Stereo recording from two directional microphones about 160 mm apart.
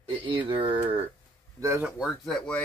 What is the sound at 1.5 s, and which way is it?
Speech, 20° right (ahead or behind).